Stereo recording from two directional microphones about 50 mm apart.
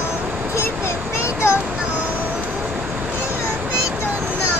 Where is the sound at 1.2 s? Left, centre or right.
Left.